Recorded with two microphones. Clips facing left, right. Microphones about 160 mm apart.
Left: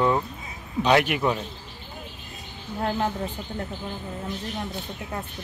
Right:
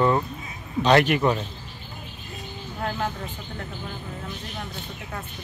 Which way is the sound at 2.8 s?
20° left (ahead or behind).